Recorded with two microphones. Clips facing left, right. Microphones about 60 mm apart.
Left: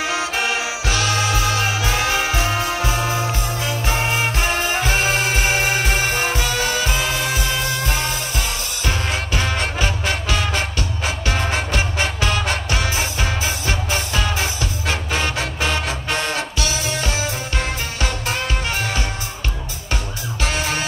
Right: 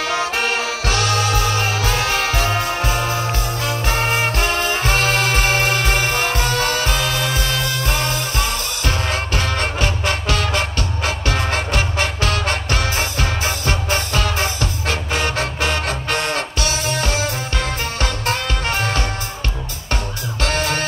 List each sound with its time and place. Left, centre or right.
0.2 s music: right
1.6 s music: centre
2.6 s music: right
3.0 s music: centre
4.0 s music: right
4.8 s music: right
7.0 s music: left
8.0 s music: right
9.3 s music: centre
13.4 s music: right
16.3 s music: right